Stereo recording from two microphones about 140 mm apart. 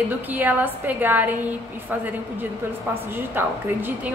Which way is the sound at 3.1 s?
15° right (ahead or behind).